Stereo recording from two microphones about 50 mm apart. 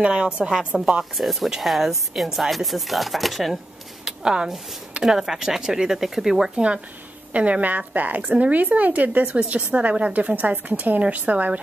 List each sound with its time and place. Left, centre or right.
0.0 s a woman's voice: centre
0.7 s speech: centre
4.0 s a sound: centre
5.0 s speech: centre
7.3 s a woman's voice: right